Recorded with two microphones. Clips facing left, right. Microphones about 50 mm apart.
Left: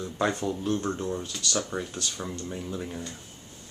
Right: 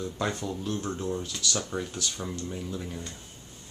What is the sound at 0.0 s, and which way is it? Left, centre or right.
Speech, centre.